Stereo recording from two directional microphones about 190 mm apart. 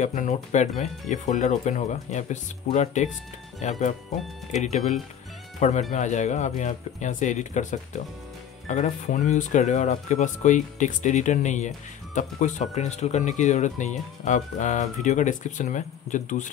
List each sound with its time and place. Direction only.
0.0 s speech: 40° left (ahead or behind)